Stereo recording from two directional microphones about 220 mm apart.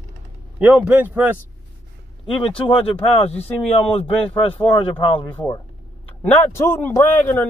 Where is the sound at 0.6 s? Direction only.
5° right (ahead or behind).